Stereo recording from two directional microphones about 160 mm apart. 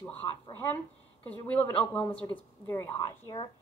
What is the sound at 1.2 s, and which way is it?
A woman's voice, 10° left (ahead or behind).